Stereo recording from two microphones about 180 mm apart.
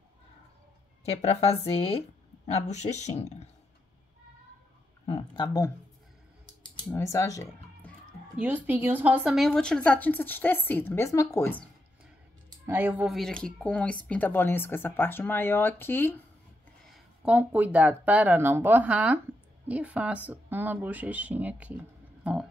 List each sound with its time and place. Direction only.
1.2 s speech: 35° left (ahead or behind)
5.0 s speech: 30° left (ahead or behind)
6.9 s speech: 15° left (ahead or behind)
8.4 s a woman's voice: 10° right (ahead or behind); by 11.6 s 15° left (ahead or behind)
12.6 s speech: 15° right (ahead or behind)
13.1 s a woman's voice: 5° left (ahead or behind)
16.8 s speech: centre (ahead or behind)